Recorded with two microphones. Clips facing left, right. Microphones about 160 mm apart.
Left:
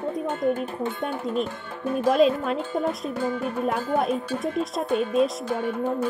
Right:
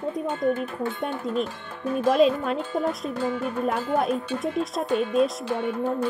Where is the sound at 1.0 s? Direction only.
Centre (ahead or behind).